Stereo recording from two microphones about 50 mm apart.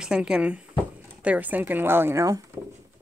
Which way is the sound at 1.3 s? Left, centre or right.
Right.